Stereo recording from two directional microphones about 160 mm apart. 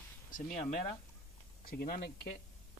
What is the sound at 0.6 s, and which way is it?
Speech, 45° left (ahead or behind).